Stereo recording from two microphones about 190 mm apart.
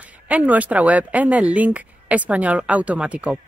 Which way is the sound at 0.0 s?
10° right (ahead or behind).